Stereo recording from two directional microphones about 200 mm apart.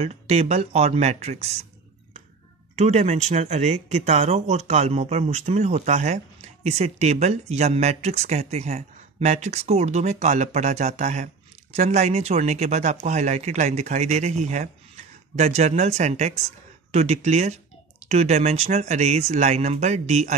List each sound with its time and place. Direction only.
0.0 s speech: 30° right (ahead or behind)
2.8 s speech: 35° right (ahead or behind)